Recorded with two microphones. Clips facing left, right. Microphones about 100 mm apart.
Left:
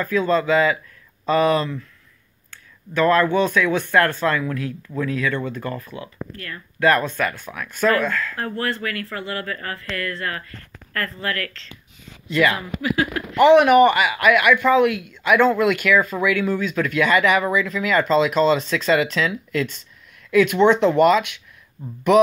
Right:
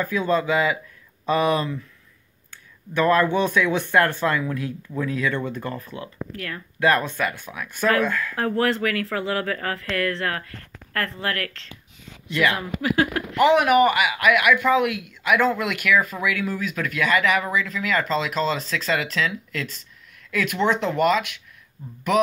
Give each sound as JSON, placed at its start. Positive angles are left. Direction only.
{"t": 0.0, "sound": "speech", "side_deg": -15}
{"t": 6.3, "sound": "speech", "side_deg": -90}
{"t": 6.8, "sound": "speech", "side_deg": -20}
{"t": 8.4, "sound": "speech", "side_deg": -90}
{"t": 10.9, "sound": "speech", "side_deg": -60}
{"t": 12.3, "sound": "speech", "side_deg": -5}
{"t": 12.5, "sound": "speech", "side_deg": -50}
{"t": 13.4, "sound": "speech", "side_deg": -5}